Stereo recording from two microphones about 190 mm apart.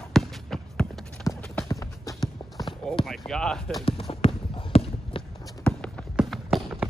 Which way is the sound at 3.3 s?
5° left (ahead or behind).